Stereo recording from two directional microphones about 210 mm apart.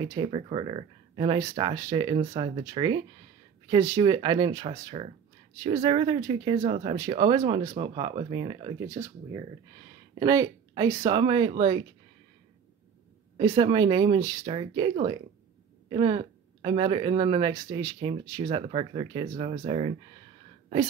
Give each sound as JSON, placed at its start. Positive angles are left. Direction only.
{"t": 0.0, "sound": "speech", "side_deg": -20}
{"t": 13.4, "sound": "speech", "side_deg": -20}